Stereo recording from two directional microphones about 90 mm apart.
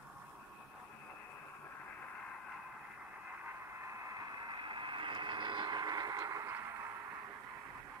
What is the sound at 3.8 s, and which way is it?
White noise, 35° right (ahead or behind).